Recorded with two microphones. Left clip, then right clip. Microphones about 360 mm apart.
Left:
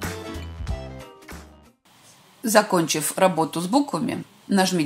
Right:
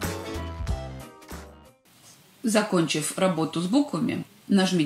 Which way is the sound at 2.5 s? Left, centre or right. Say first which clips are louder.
Left 5 dB; centre.